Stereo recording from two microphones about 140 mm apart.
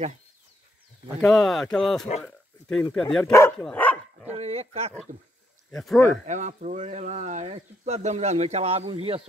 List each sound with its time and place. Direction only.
1.2 s speech: centre (ahead or behind)
3.6 s dog: 10° left (ahead or behind)
4.3 s speech: 50° right (ahead or behind)
5.7 s speech: centre (ahead or behind)
6.0 s speech: 60° right (ahead or behind); by 9.3 s 40° right (ahead or behind)